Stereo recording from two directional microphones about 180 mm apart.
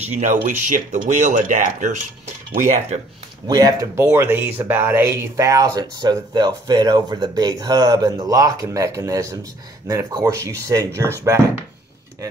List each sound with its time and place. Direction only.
0.0 s speech: 40° right (ahead or behind)
3.4 s speech: 20° right (ahead or behind)